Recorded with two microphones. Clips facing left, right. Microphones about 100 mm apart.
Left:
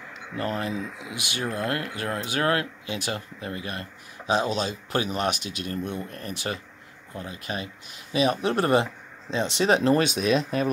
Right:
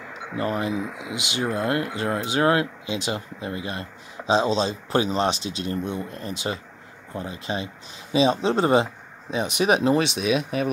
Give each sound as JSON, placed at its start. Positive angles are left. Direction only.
{"t": 0.4, "sound": "speech", "side_deg": -20}
{"t": 9.9, "sound": "speech", "side_deg": 0}